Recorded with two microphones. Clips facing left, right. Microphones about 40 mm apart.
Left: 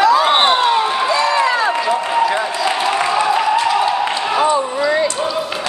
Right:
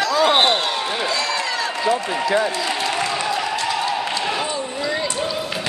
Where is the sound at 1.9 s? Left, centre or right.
Centre.